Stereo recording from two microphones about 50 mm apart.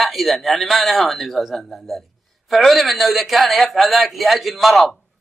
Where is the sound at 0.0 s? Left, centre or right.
Centre.